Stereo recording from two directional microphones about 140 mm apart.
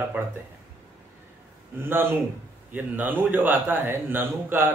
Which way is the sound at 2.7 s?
15° right (ahead or behind).